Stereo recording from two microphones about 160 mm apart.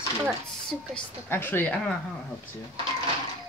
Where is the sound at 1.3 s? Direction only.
15° left (ahead or behind).